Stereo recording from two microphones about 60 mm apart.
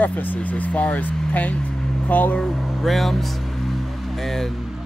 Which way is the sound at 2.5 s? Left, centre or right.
Centre.